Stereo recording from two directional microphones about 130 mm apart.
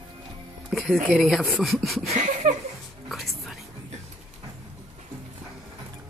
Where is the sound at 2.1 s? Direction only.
70° right (ahead or behind).